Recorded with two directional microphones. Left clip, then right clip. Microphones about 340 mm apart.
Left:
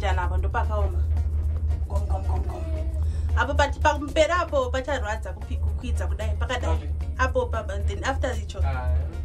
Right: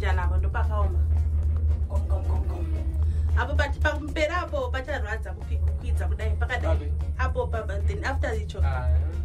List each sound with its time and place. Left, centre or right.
0.0 s music: centre
3.3 s speech: centre
5.8 s music: centre
7.2 s speech: centre